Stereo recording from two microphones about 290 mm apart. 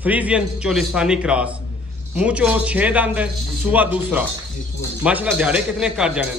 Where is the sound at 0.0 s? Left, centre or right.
Centre.